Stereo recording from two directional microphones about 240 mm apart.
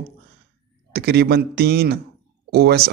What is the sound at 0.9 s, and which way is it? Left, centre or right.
Speech, right.